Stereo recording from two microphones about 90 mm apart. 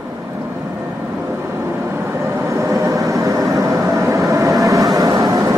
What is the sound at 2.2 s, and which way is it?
Vehicle, 35° right (ahead or behind).